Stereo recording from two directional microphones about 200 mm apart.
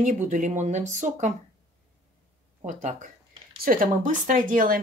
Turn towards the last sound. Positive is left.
turn(degrees=-45)  # may be behind; listen again after turning